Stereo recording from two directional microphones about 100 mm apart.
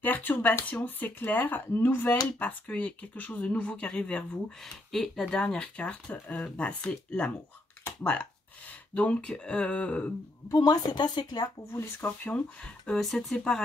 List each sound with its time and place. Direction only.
0.0 s speech: 20° left (ahead or behind)
10.5 s speech: 40° left (ahead or behind)
11.7 s speech: 25° left (ahead or behind)
12.3 s speech: 10° left (ahead or behind)